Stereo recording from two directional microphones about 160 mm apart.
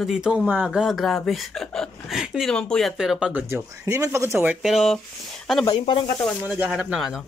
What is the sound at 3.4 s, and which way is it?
Speech, 15° right (ahead or behind).